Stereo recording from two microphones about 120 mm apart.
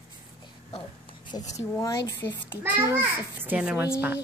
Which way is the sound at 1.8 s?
30° left (ahead or behind).